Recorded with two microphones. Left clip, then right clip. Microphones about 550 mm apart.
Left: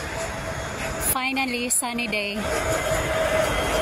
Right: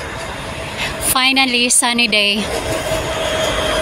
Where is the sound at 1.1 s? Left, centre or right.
Left.